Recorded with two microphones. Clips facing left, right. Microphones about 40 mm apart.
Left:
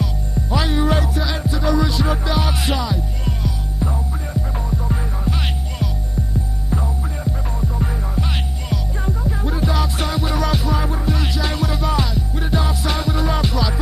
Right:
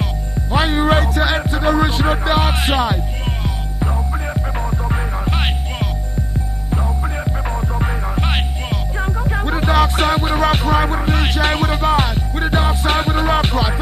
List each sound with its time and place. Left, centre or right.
0.0 s music: right
7.0 s music: right
9.4 s music: right